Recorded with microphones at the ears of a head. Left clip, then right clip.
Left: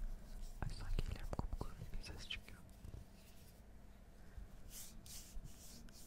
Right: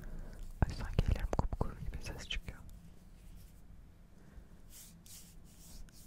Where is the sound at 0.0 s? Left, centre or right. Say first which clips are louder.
Right 6 dB; right.